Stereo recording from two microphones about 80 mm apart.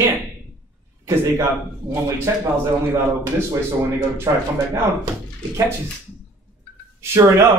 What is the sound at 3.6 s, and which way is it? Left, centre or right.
A man's voice, right.